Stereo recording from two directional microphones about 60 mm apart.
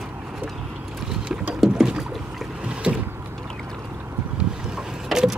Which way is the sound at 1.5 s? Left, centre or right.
Centre.